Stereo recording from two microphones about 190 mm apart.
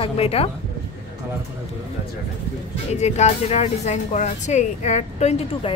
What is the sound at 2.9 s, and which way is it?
A woman's voice, 35° left (ahead or behind).